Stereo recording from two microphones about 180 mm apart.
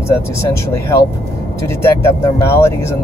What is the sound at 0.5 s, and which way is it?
Speech, 15° left (ahead or behind).